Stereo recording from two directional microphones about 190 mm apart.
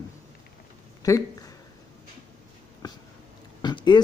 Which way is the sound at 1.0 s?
20° left (ahead or behind).